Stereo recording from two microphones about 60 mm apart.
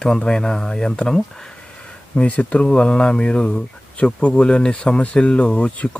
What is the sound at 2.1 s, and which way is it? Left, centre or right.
Speech, left.